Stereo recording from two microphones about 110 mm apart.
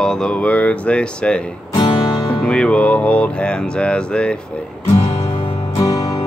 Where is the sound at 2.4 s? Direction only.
10° left (ahead or behind).